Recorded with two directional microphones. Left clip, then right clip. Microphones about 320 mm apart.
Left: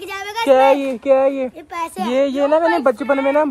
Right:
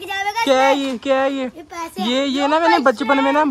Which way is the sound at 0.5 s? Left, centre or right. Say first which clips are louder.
Left 4 dB; centre.